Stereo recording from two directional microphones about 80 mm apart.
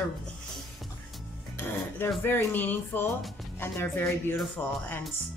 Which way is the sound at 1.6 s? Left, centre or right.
Left.